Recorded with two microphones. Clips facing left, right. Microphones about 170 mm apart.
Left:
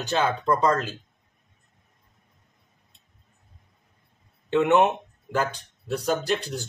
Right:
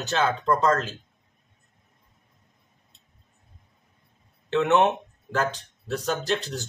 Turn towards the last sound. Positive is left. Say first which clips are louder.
# left 2 dB
turn(degrees=10)  # may be behind; listen again after turning